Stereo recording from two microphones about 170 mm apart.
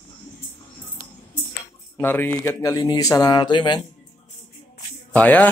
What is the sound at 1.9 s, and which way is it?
Speech, 10° left (ahead or behind).